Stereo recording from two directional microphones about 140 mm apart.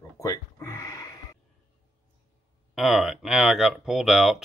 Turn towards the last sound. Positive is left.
turn(degrees=0)  # may be behind; listen again after turning